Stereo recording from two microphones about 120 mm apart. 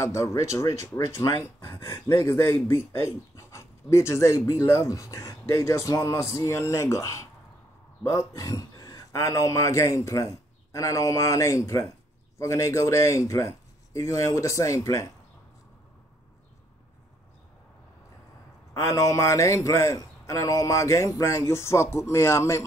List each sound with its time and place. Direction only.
0.0 s speech: 25° left (ahead or behind)
2.2 s a man's voice: 20° left (ahead or behind)
18.7 s speech: 25° left (ahead or behind)